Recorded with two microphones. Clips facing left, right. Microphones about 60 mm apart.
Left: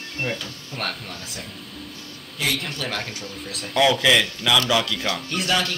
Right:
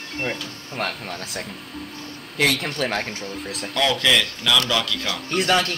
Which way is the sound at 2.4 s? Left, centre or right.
Right.